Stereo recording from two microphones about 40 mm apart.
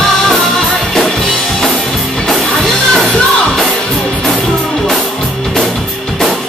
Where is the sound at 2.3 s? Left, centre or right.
Centre.